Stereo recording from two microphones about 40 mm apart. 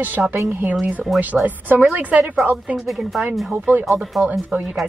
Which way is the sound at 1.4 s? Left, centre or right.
Right.